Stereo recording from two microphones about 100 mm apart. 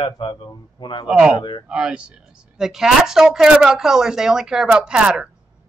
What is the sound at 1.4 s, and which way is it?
Speech, 50° left (ahead or behind).